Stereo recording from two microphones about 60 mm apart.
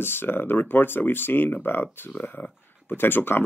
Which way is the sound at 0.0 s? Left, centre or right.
Left.